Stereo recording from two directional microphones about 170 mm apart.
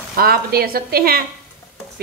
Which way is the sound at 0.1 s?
60° right (ahead or behind).